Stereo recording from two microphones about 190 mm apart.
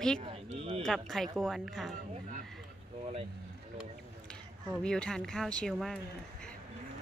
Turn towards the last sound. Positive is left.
turn(degrees=0)  # may be behind; listen again after turning